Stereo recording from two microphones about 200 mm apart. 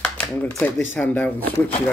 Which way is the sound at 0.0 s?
5° left (ahead or behind).